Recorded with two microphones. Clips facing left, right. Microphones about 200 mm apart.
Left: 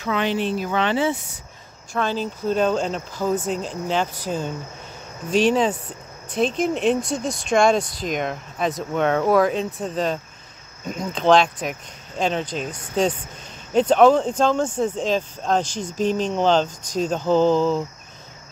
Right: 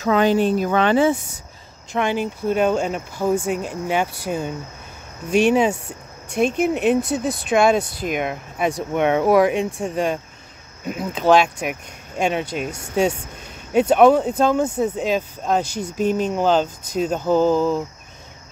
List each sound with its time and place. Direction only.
0.0 s speech: 40° right (ahead or behind)
1.9 s speech: 15° right (ahead or behind)